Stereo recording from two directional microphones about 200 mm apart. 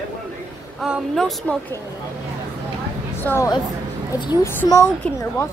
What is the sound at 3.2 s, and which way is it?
A woman's voice, 15° left (ahead or behind).